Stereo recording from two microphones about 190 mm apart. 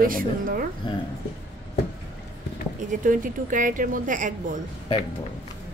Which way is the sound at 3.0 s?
45° right (ahead or behind).